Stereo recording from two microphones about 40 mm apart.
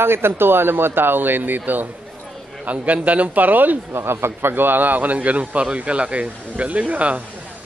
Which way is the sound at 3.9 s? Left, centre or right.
Right.